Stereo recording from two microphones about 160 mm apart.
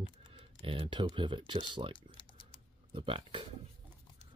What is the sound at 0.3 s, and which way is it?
Speech, 30° right (ahead or behind).